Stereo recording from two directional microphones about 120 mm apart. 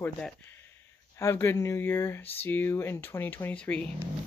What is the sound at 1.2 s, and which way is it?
Speech, 20° left (ahead or behind).